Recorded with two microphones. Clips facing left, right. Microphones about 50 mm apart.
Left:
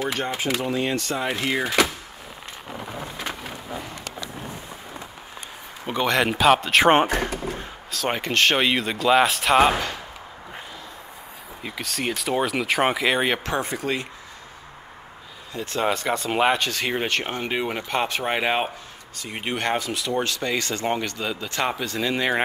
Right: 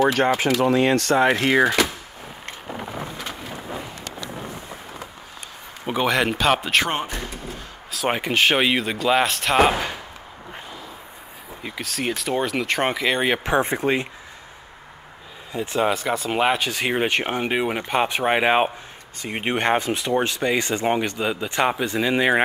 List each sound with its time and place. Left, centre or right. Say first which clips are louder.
0.1 s speech: right 6 dB; right
2.7 s rain: right 3 dB; centre
5.9 s speech: right 1 dB; centre
6.9 s speech: left 9 dB; left
7.9 s speech: right 2 dB; centre
11.6 s speech: right 1 dB; centre
13.5 s speech: right 5 dB; right
15.5 s speech: right 4 dB; centre
15.8 s speech: right 1 dB; centre